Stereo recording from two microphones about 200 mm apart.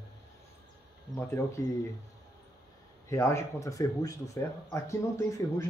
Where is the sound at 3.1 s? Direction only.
15° left (ahead or behind).